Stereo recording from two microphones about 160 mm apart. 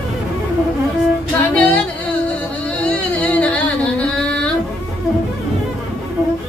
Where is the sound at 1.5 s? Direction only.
10° left (ahead or behind).